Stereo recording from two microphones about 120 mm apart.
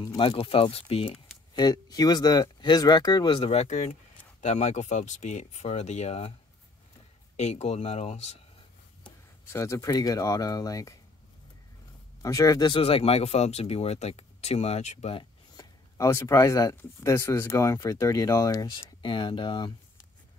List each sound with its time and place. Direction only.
0.2 s speech: 50° left (ahead or behind)
1.5 s speech: 35° left (ahead or behind)
3.5 s speech: 75° left (ahead or behind); by 6.3 s 60° left (ahead or behind)
7.3 s speech: 65° left (ahead or behind)
9.0 s speech: 25° left (ahead or behind)
12.2 s speech: 30° left (ahead or behind)
12.7 s speech: 50° left (ahead or behind); by 15.1 s 70° left (ahead or behind)
16.0 s speech: 25° left (ahead or behind)
18.9 s speech: 40° left (ahead or behind)